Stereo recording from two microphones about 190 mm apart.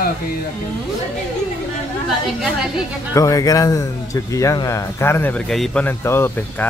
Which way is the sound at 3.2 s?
20° left (ahead or behind).